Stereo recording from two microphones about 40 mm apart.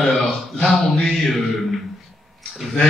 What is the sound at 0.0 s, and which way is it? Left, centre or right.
Speech, centre.